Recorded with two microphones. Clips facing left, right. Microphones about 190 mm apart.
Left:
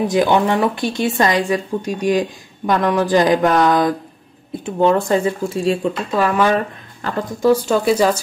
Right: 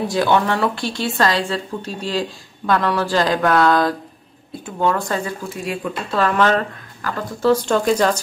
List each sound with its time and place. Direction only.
0.0 s speech: 20° left (ahead or behind)
6.1 s speech: 10° left (ahead or behind)